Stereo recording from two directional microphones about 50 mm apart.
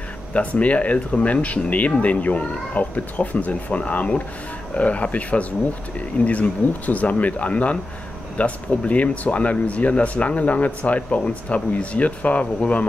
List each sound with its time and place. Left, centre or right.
0.3 s speech: left